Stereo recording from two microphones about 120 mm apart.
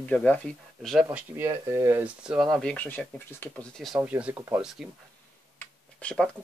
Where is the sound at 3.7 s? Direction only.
Centre (ahead or behind).